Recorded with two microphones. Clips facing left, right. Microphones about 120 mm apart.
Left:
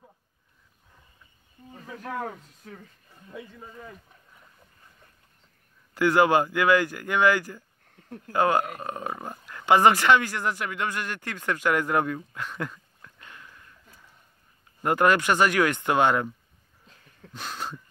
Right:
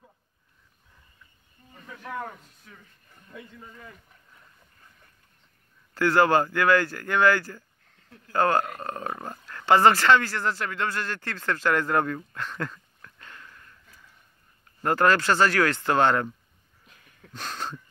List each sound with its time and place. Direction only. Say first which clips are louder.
1.7 s speech: left 4 dB; 35° left (ahead or behind)
2.2 s speech: left 4 dB; 50° left (ahead or behind)
3.1 s a man's voice: left 3 dB; 25° left (ahead or behind)
5.9 s speech: even; 15° left (ahead or behind)
7.9 s a sound: left 11 dB; 50° left (ahead or behind)
8.3 s speech: even; 15° left (ahead or behind)
14.8 s speech: even; 15° left (ahead or behind)
16.8 s a sound: left 2 dB; 30° left (ahead or behind)
17.3 s speech: right 1 dB; 10° left (ahead or behind)